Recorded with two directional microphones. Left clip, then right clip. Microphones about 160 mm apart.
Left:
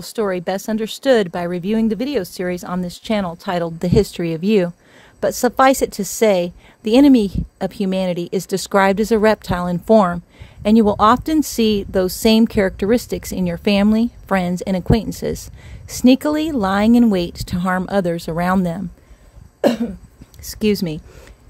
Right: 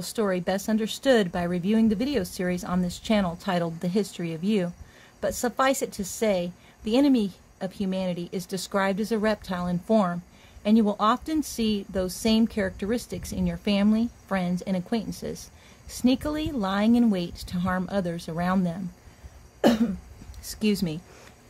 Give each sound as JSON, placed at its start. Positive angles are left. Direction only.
{"t": 0.0, "sound": "a woman's voice", "side_deg": 65}
{"t": 19.6, "sound": "cough", "side_deg": 55}
{"t": 20.4, "sound": "a woman's voice", "side_deg": 60}